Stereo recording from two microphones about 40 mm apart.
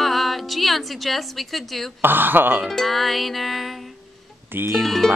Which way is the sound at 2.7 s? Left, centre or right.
Centre.